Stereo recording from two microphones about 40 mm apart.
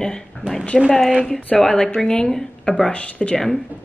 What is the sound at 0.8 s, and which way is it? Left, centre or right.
Speech, centre.